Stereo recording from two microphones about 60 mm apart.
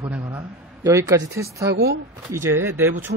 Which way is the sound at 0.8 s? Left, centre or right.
Right.